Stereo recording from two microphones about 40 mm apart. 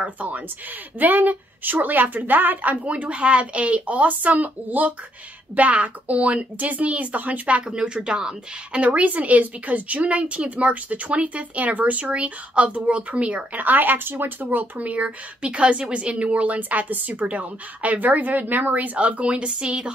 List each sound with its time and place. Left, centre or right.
0.0 s a woman's voice: right
8.8 s speech: right
13.5 s speech: right